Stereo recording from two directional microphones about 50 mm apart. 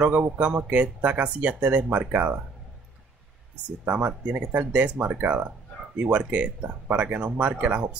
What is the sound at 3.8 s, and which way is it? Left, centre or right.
Speech, right.